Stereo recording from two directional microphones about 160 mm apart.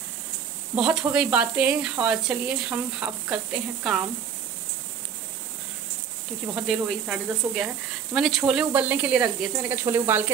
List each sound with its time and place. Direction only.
0.7 s speech: 5° right (ahead or behind)
6.4 s speech: centre (ahead or behind)